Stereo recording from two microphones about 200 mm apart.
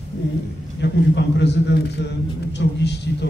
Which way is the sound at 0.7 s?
60° left (ahead or behind).